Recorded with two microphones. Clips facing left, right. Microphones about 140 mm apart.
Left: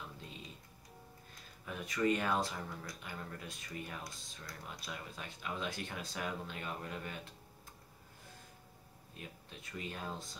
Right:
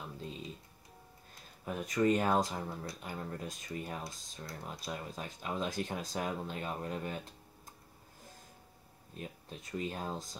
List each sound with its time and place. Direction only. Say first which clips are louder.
1.7 s speech: right 4 dB; 40° right (ahead or behind)
9.1 s speech: right 6 dB; 40° right (ahead or behind)